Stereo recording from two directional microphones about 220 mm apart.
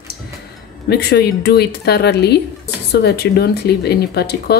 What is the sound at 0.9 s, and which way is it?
Speech, 45° left (ahead or behind).